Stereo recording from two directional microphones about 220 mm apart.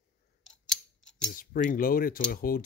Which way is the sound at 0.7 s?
5° left (ahead or behind).